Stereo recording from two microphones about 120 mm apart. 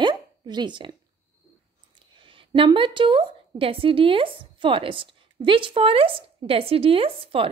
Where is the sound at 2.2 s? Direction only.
45° right (ahead or behind).